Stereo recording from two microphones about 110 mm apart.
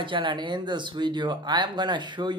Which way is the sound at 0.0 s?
50° right (ahead or behind).